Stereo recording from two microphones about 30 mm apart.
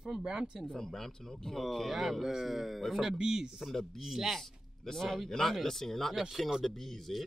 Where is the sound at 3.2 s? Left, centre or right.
Right.